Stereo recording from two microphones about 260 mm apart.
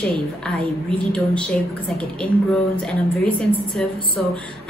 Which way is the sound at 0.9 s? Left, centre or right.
Centre.